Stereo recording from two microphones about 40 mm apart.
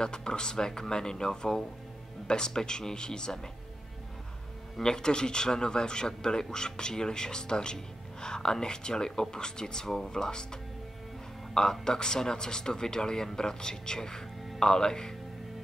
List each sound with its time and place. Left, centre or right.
0.0 s speech: centre
4.8 s speech: centre